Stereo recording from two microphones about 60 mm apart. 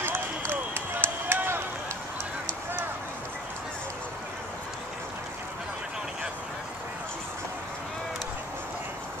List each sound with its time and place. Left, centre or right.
0.5 s run: right